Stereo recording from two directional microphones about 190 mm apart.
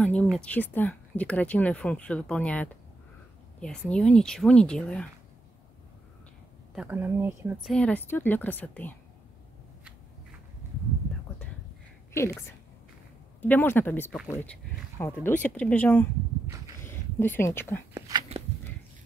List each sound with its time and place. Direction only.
0.0 s speech: 5° left (ahead or behind)
6.7 s speech: 10° right (ahead or behind)
7.6 s speech: 5° left (ahead or behind)
12.1 s a woman's voice: 15° left (ahead or behind)
17.9 s a sound: 20° right (ahead or behind)